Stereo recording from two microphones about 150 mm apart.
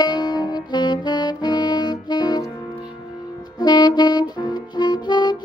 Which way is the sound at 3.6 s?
30° left (ahead or behind).